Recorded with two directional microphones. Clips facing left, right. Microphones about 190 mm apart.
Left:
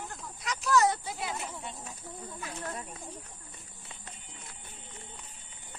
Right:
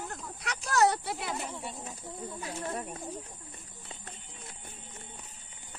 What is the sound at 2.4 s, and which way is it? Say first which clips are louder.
Speech: right 3 dB; 30° right (ahead or behind).